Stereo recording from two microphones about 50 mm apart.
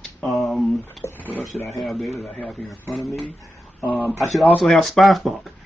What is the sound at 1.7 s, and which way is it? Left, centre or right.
A man's voice, centre.